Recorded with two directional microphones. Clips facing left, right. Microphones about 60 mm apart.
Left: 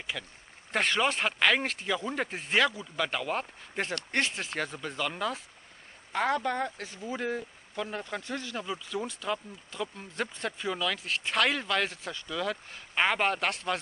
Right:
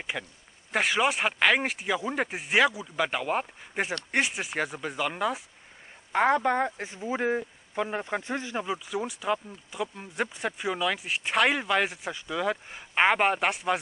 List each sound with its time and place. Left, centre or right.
0.1 s speech: right
0.7 s speech: centre